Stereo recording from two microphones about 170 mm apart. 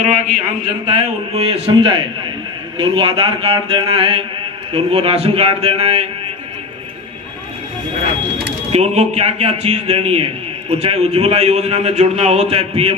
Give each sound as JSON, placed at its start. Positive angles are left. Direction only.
{"t": 0.0, "sound": "a man's voice", "side_deg": -45}
{"t": 0.8, "sound": "a man's voice", "side_deg": -35}
{"t": 8.7, "sound": "a man's voice", "side_deg": -40}